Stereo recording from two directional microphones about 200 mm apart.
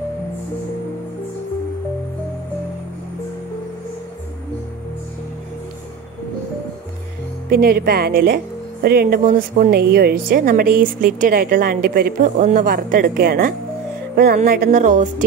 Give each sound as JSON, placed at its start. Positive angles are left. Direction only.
{"t": 7.4, "sound": "a woman's voice", "side_deg": -50}